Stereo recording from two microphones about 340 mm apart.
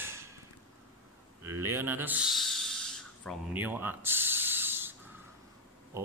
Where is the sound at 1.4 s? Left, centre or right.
Centre.